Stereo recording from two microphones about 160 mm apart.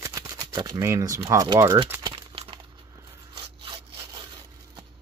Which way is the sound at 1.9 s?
25° right (ahead or behind).